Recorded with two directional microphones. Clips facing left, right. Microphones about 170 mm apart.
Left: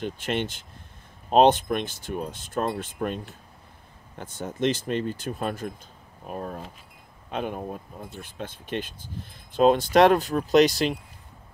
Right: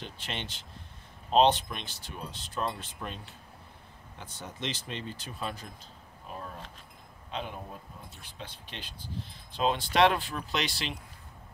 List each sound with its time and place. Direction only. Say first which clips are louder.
0.0 s speech: left 11 dB; 50° left (ahead or behind)